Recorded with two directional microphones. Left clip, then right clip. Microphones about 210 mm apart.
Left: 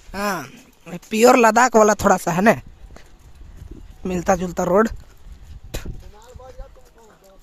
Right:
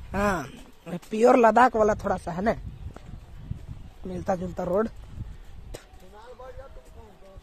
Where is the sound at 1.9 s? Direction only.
50° left (ahead or behind).